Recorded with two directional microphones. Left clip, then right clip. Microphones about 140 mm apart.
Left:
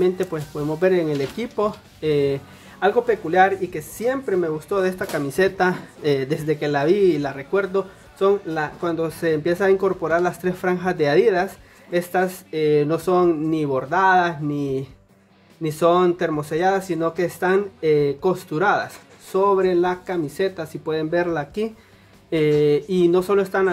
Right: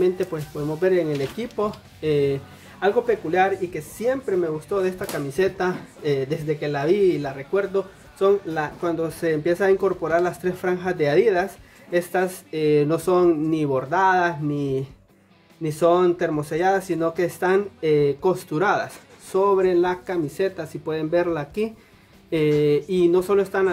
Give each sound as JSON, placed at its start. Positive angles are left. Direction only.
{"t": 0.0, "sound": "speech", "side_deg": 25}
{"t": 8.2, "sound": "speech", "side_deg": 10}
{"t": 15.6, "sound": "speech", "side_deg": 15}